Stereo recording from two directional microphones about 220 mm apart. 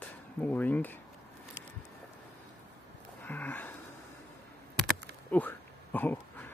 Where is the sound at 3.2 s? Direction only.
10° left (ahead or behind).